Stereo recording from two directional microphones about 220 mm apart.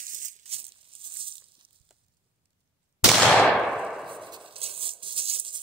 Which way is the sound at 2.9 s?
Centre (ahead or behind).